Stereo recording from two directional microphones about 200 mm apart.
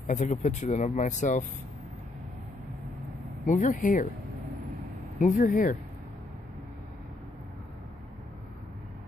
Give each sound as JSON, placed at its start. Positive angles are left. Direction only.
{"t": 0.0, "sound": "speech", "side_deg": 35}
{"t": 3.4, "sound": "speech", "side_deg": 40}
{"t": 5.2, "sound": "speech", "side_deg": 45}